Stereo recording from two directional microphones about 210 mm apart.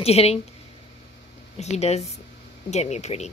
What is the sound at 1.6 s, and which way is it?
Speech, 30° left (ahead or behind).